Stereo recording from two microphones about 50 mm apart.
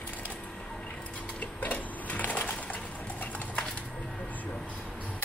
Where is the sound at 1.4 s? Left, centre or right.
Left.